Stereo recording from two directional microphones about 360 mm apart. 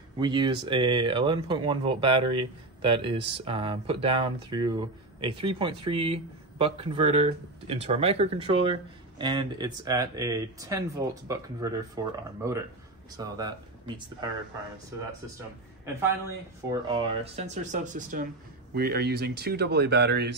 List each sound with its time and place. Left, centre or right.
0.2 s speech: centre
15.8 s a woman's voice: centre; by 20.3 s right